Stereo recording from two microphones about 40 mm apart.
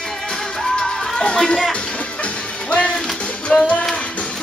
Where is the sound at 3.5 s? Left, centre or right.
Left.